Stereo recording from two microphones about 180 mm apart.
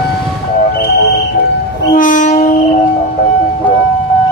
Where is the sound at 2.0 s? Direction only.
45° left (ahead or behind).